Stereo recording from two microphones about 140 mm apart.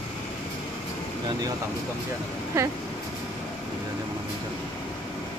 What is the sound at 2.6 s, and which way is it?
Speech, 20° right (ahead or behind).